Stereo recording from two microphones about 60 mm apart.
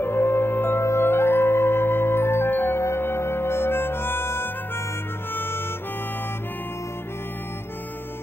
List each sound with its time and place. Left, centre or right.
0.0 s music: left